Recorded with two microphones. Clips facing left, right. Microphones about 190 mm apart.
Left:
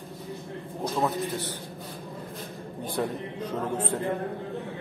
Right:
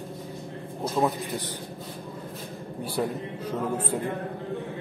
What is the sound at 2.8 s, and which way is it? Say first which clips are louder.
A man's voice: right 1 dB; 10° right (ahead or behind).